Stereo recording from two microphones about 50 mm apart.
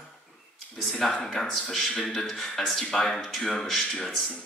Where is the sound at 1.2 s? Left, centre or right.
Centre.